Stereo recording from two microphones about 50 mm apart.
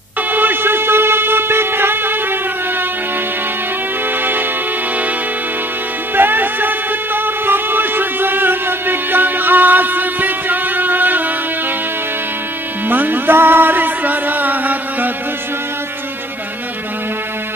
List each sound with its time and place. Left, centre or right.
0.3 s a sound: right
4.2 s music: right
6.1 s music: right
12.8 s music: right